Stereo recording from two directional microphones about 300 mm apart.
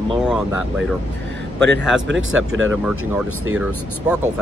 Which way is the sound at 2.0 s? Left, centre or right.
Right.